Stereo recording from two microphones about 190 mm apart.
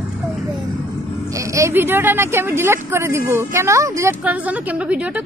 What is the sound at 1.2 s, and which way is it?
A woman's voice, 15° right (ahead or behind).